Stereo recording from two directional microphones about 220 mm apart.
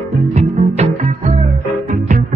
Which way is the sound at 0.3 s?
30° right (ahead or behind).